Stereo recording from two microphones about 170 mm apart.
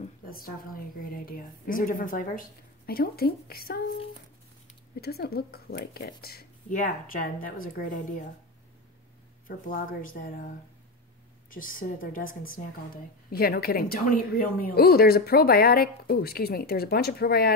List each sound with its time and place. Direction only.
0.3 s a woman's voice: 60° left (ahead or behind)
5.0 s a woman's voice: 65° left (ahead or behind)
9.7 s speech: 55° left (ahead or behind)
11.5 s a woman's voice: 55° left (ahead or behind)